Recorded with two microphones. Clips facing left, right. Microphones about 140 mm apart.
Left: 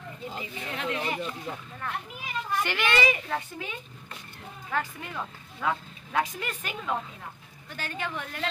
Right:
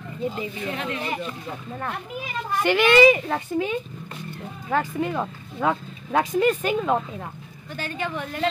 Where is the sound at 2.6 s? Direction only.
20° right (ahead or behind).